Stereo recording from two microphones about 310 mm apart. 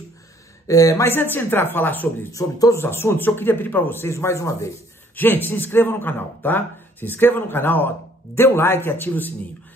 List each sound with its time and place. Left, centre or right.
0.7 s speech: centre